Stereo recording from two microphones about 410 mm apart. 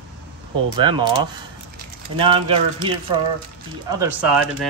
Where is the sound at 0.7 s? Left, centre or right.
Centre.